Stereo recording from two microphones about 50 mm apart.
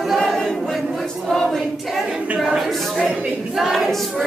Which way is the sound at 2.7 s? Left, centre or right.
Centre.